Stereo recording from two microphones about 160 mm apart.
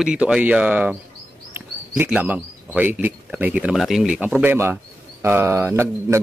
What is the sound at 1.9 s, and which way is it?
Speech, 10° right (ahead or behind).